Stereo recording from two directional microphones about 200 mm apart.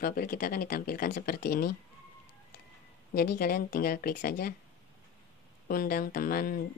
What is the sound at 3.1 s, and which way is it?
Speech, 50° left (ahead or behind).